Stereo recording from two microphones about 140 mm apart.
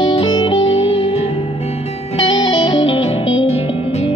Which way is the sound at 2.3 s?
40° left (ahead or behind).